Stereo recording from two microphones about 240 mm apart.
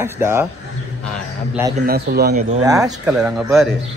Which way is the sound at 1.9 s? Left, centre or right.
Right.